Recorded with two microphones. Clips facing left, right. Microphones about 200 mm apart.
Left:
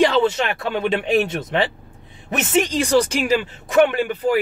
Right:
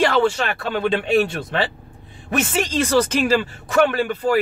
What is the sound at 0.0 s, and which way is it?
Speech, 20° left (ahead or behind).